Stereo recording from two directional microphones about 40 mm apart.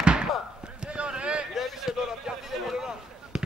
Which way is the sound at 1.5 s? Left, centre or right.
Centre.